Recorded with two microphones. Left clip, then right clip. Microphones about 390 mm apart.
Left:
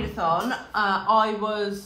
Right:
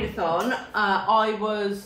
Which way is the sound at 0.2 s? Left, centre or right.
Centre.